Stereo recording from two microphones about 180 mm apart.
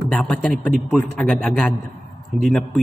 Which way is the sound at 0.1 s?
5° left (ahead or behind).